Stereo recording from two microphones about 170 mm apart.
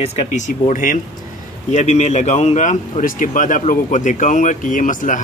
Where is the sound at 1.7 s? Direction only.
40° left (ahead or behind).